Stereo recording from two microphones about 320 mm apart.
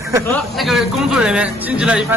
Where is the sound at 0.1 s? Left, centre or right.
Centre.